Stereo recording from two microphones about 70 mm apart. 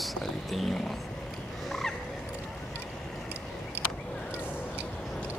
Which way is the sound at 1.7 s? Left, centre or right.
Centre.